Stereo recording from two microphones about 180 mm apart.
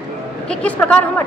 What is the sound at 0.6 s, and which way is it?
Speech, 10° left (ahead or behind).